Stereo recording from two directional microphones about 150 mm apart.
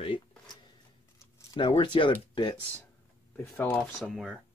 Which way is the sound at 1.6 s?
35° left (ahead or behind).